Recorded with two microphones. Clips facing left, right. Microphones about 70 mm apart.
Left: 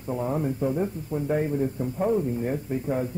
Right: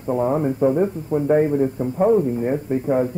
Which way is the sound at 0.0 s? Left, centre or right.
Right.